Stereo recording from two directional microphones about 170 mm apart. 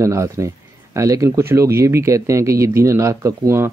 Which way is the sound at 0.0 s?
15° right (ahead or behind).